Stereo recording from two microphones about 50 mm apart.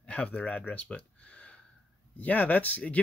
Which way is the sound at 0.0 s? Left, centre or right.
Left.